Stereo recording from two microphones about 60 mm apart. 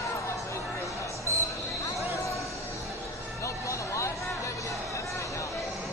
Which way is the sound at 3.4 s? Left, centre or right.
Left.